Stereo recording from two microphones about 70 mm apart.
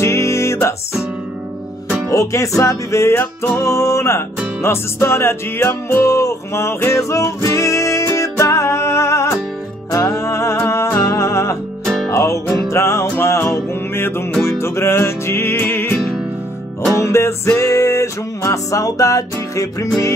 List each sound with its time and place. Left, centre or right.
0.0 s music: left
2.0 s music: left
3.2 s music: left
3.6 s music: left
6.0 s music: left
17.0 s music: left